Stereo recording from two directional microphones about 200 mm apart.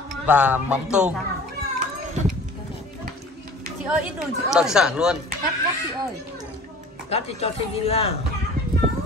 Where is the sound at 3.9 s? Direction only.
5° right (ahead or behind).